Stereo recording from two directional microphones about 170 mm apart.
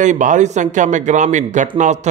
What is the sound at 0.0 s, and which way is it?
A man's voice, 45° right (ahead or behind).